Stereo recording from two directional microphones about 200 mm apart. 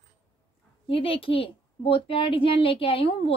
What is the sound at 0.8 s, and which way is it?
A woman's voice, 30° left (ahead or behind).